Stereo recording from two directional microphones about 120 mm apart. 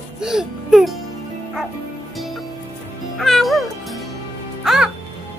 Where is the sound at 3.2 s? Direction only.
Centre (ahead or behind).